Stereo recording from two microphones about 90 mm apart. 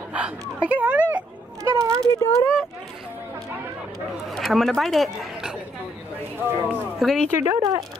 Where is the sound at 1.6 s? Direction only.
35° right (ahead or behind).